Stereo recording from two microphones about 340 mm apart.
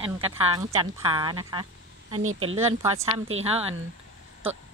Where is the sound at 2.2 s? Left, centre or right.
Right.